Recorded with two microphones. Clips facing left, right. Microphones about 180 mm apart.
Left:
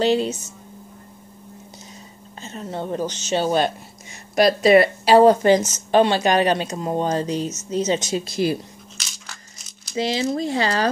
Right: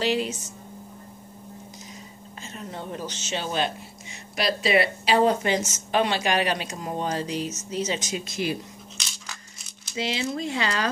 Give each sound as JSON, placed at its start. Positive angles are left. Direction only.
{"t": 0.0, "sound": "speech", "side_deg": 30}
{"t": 2.4, "sound": "speech", "side_deg": 35}
{"t": 8.9, "sound": "a sound", "side_deg": 0}
{"t": 9.8, "sound": "speech", "side_deg": 40}